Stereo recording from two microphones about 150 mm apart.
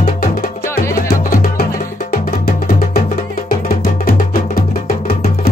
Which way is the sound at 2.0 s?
80° left.